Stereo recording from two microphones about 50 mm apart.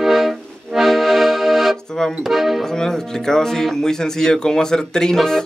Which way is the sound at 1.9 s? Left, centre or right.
Centre.